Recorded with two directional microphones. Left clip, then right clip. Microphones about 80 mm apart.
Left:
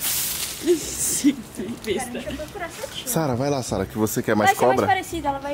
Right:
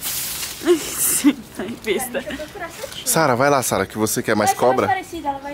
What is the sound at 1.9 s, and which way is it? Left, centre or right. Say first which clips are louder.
Speech: right 4 dB; right.